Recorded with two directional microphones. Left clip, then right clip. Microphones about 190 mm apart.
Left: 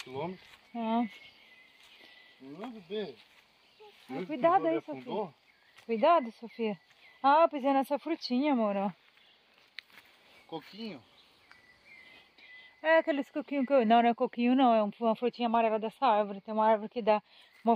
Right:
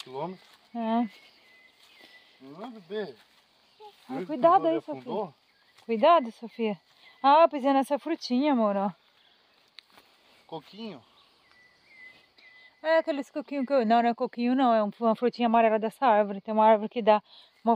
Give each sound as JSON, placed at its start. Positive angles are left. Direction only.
{"t": 0.1, "sound": "speech", "side_deg": -40}
{"t": 0.7, "sound": "speech", "side_deg": -20}
{"t": 2.4, "sound": "speech", "side_deg": -25}
{"t": 5.9, "sound": "speech", "side_deg": -25}
{"t": 10.5, "sound": "speech", "side_deg": -35}
{"t": 12.4, "sound": "speech", "side_deg": -5}
{"t": 17.3, "sound": "speech", "side_deg": -15}